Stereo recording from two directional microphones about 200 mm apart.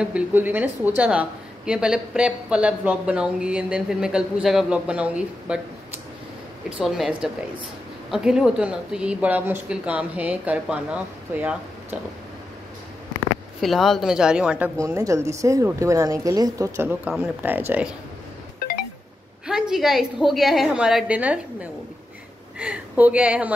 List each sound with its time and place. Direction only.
0.0 s a woman's voice: 10° right (ahead or behind)
6.8 s a woman's voice: 5° right (ahead or behind)
13.6 s a woman's voice: centre (ahead or behind)
19.4 s a woman's voice: 5° right (ahead or behind)